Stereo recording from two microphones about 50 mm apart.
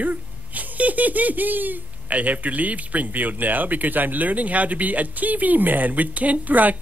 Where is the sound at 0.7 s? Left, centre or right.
Right.